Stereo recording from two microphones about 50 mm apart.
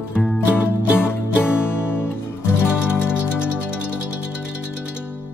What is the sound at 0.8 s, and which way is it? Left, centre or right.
Music, right.